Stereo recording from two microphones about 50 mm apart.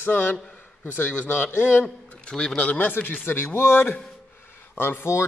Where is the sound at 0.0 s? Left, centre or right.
Left.